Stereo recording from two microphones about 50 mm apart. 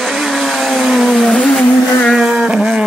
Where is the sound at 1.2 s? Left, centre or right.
Left.